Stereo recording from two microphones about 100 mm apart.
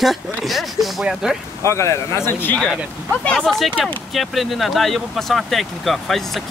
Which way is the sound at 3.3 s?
5° left (ahead or behind).